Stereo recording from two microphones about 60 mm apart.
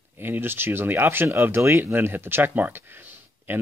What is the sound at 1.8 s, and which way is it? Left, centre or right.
Speech, right.